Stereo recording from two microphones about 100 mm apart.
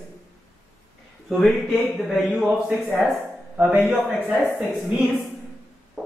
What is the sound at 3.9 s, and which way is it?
A woman's voice, 15° right (ahead or behind).